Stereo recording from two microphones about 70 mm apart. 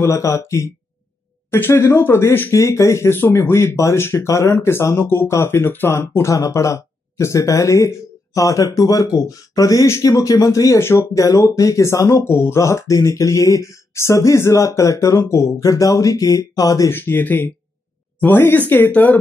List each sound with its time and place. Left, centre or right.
0.0 s speech: left
2.5 s speech: left
10.8 s speech: left
16.9 s speech: left